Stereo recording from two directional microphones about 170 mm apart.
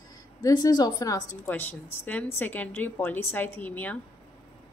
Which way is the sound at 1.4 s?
10° left (ahead or behind).